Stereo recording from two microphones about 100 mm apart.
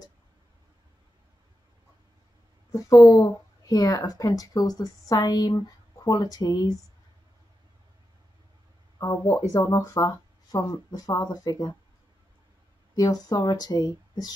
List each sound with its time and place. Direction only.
2.7 s a woman's voice: 40° left (ahead or behind)
9.1 s speech: 25° left (ahead or behind)
9.7 s a woman's voice: 40° left (ahead or behind)
12.9 s a woman's voice: 40° left (ahead or behind)